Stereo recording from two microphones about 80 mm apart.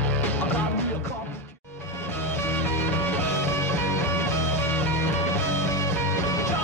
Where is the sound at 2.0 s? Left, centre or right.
Left.